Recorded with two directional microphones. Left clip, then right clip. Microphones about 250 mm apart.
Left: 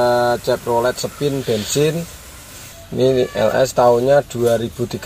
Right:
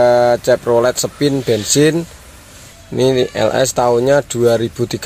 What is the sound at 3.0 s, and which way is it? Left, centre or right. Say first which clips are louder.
Speech: right 2 dB; right.